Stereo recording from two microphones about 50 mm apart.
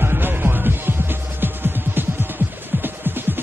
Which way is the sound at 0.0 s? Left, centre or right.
Right.